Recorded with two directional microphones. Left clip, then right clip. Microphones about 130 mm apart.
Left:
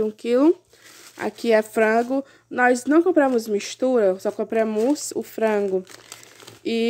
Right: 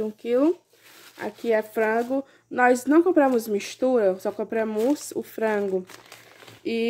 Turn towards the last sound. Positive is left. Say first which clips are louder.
# left 3 dB
turn(degrees=30)  # may be behind; listen again after turning